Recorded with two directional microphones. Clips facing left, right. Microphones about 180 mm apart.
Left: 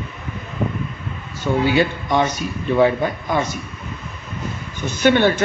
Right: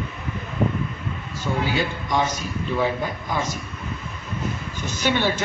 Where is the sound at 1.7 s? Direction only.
65° left (ahead or behind).